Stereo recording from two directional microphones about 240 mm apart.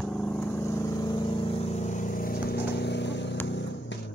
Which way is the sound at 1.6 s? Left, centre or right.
Left.